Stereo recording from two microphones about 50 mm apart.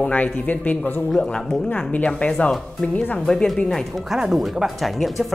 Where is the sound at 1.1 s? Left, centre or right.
Centre.